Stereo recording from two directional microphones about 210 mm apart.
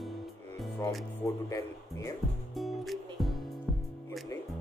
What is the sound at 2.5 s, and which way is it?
Music, centre (ahead or behind).